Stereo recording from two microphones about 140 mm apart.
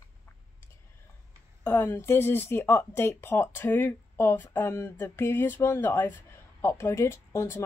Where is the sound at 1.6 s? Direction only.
15° left (ahead or behind).